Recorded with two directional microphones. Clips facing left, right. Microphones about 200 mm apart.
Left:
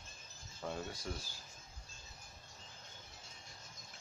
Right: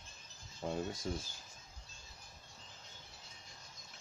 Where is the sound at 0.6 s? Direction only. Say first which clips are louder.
Right 4 dB; 20° right (ahead or behind).